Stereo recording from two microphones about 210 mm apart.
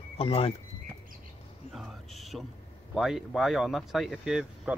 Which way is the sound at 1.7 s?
Centre (ahead or behind).